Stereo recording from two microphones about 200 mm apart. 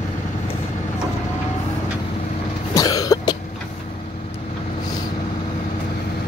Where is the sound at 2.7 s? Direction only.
20° left (ahead or behind).